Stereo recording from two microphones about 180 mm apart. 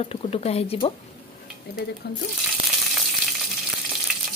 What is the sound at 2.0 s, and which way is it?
Speech, 65° left (ahead or behind).